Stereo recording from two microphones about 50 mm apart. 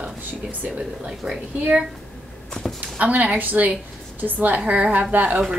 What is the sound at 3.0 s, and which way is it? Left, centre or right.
A woman's voice, right.